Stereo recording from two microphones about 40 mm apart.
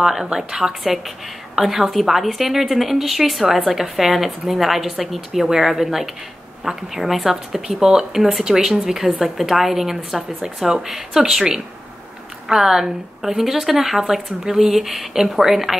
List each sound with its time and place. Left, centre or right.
0.0 s a woman's voice: centre